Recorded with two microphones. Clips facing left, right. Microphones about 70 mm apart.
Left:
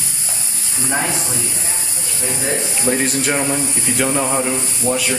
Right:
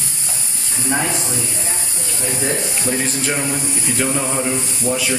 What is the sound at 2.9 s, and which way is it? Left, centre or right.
Speech, centre.